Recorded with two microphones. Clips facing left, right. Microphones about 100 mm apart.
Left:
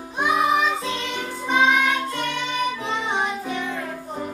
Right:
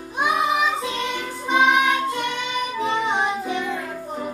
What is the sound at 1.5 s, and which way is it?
Music, 15° right (ahead or behind).